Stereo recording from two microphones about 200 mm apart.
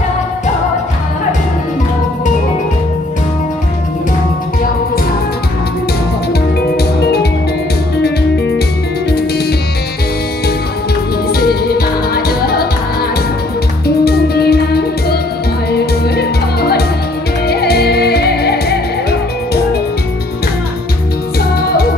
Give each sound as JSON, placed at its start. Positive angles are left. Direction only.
{"t": 7.0, "sound": "music", "side_deg": 55}
{"t": 11.3, "sound": "music", "side_deg": 50}
{"t": 13.8, "sound": "music", "side_deg": 50}